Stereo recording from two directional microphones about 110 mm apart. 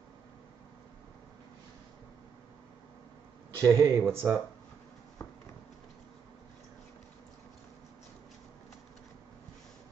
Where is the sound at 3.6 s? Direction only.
25° right (ahead or behind).